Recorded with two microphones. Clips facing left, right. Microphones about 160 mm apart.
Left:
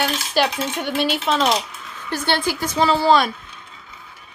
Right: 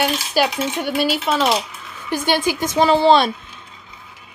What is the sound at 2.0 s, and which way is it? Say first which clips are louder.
Speech: right 3 dB; 15° right (ahead or behind).